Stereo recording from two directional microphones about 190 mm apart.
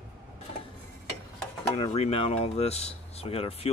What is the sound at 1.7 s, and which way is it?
Speech, 30° left (ahead or behind).